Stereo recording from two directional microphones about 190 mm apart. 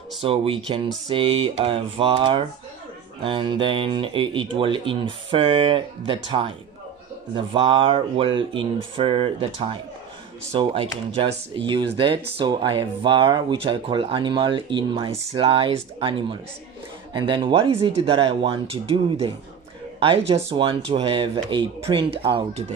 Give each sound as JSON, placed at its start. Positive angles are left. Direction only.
{"t": 0.2, "sound": "speech", "side_deg": -30}
{"t": 10.5, "sound": "speech", "side_deg": -25}